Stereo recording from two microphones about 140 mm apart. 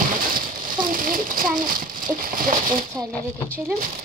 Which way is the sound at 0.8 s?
80° right.